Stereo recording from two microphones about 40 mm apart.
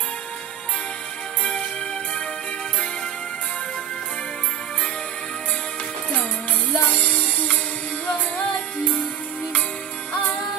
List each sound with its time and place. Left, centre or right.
1.4 s music: left
6.8 s music: left